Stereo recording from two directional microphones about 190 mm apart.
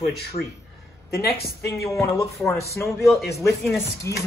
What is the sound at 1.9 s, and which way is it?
Speech, 15° left (ahead or behind).